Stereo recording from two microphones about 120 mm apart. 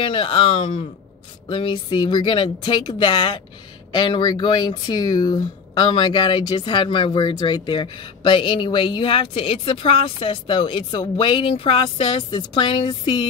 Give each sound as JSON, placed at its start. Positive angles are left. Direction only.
{"t": 0.0, "sound": "speech", "side_deg": 45}